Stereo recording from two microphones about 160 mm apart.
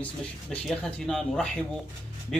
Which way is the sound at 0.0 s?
5° left (ahead or behind).